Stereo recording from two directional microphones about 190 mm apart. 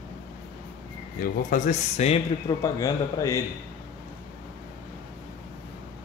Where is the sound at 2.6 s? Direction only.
20° left (ahead or behind).